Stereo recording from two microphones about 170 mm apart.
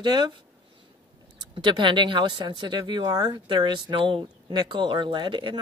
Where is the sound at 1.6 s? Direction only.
30° right (ahead or behind).